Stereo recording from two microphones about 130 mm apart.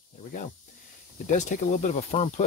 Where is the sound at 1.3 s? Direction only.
70° left (ahead or behind).